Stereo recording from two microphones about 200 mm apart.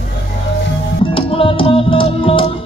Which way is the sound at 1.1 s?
25° left (ahead or behind).